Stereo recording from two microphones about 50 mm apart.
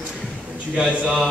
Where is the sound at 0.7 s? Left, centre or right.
Right.